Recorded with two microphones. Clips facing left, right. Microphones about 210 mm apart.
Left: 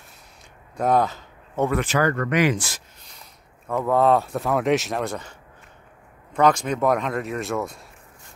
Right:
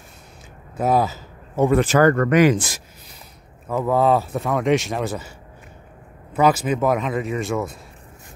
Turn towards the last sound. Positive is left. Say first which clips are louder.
# right 3 dB
turn(degrees=0)  # may be behind; listen again after turning